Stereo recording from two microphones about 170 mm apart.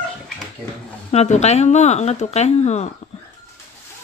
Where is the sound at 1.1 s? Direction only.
40° left (ahead or behind).